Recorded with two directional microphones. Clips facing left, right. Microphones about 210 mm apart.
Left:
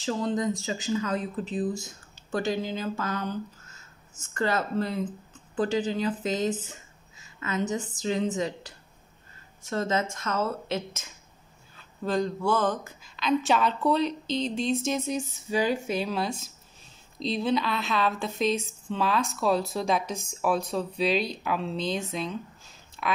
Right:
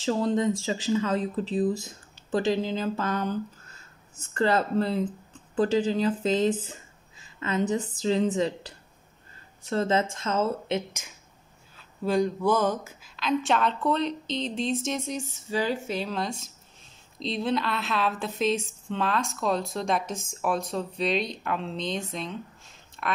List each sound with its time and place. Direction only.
0.0 s speech: 35° right (ahead or behind)
4.3 s speech: 30° right (ahead or behind)
11.7 s a woman's voice: 10° right (ahead or behind)